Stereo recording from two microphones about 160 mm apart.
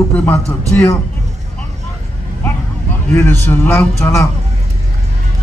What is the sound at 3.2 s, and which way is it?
Speech, 15° left (ahead or behind).